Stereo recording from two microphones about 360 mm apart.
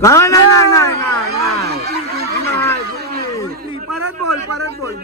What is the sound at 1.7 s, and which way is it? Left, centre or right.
Chatter, right.